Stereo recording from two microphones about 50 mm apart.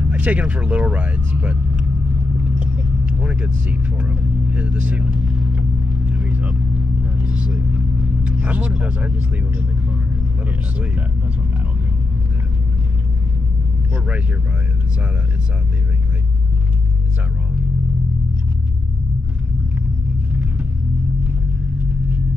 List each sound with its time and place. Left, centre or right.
0.0 s speech: right
2.3 s vehicle: right
13.9 s speech: right